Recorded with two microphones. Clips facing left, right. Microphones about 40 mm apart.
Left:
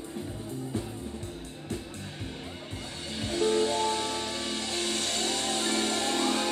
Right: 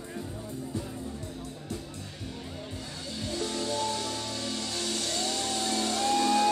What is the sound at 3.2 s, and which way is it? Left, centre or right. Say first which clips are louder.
Music: left 7 dB; left.